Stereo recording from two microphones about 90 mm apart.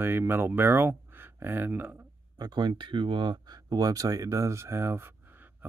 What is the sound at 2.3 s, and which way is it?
Speech, 50° right (ahead or behind).